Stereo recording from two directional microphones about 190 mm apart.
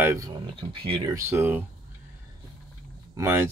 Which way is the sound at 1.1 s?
15° right (ahead or behind).